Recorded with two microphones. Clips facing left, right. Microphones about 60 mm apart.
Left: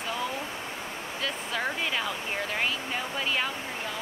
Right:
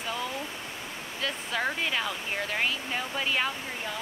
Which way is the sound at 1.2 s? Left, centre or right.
Centre.